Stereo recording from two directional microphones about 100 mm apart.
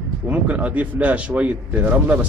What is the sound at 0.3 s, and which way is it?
Speech, 15° right (ahead or behind).